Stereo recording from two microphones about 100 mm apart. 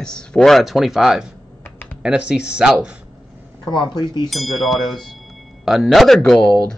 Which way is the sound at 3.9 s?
50° left (ahead or behind).